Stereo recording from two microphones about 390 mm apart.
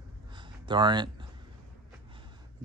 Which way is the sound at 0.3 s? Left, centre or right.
Centre.